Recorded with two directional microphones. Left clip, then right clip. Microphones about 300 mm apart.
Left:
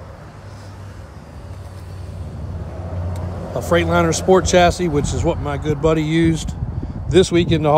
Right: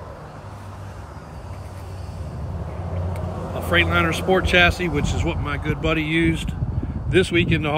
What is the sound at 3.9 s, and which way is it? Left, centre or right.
A man's voice, centre.